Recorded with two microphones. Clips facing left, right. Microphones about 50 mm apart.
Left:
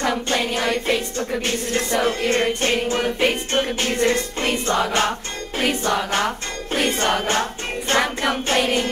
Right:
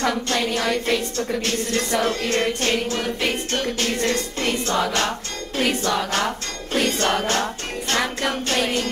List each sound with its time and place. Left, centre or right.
0.0 s music: centre